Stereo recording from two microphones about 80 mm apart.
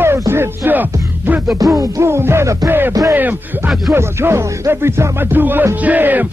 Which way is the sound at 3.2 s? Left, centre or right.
Right.